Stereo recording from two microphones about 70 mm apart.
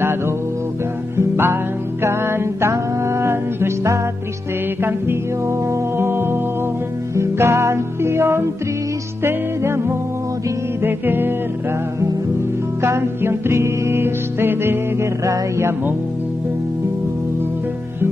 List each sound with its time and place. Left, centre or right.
1.1 s music: right
5.9 s music: right
7.2 s music: right
12.8 s music: right
15.2 s mantra: right